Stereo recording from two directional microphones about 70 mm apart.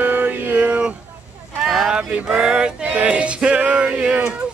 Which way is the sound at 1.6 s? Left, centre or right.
Centre.